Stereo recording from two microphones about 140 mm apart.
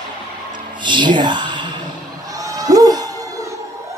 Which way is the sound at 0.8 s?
35° right (ahead or behind).